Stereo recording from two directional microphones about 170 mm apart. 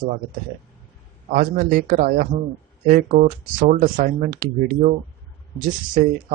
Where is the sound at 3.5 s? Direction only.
50° right (ahead or behind).